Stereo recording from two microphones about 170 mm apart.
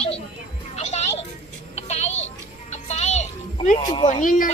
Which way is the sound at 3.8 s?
25° left (ahead or behind).